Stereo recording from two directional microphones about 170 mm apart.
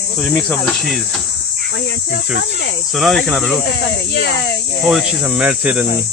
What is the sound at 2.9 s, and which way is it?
Speech, centre (ahead or behind).